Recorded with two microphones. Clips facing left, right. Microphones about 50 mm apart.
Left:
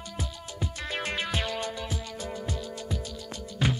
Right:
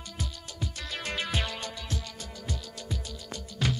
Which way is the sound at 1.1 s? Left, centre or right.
Centre.